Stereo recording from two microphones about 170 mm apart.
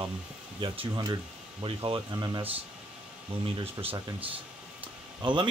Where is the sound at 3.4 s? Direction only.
30° right (ahead or behind).